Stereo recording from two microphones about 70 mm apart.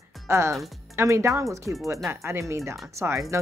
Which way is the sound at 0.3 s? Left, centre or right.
Right.